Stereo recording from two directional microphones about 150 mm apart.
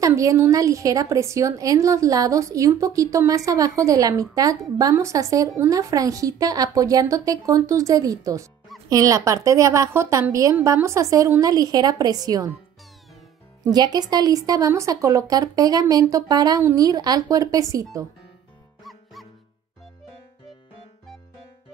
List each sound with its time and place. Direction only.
0.0 s a woman's voice: 20° right (ahead or behind)
13.7 s a woman's voice: 25° right (ahead or behind)